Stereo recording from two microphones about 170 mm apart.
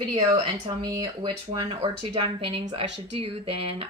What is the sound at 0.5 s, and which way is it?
Speech, 20° right (ahead or behind).